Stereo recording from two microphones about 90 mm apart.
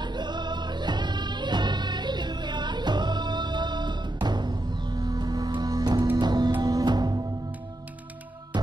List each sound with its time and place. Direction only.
0.0 s music: 55° right (ahead or behind)